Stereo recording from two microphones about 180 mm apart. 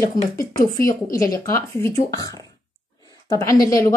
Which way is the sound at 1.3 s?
20° left (ahead or behind).